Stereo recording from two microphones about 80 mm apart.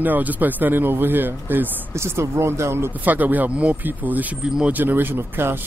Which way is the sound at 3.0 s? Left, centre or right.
Right.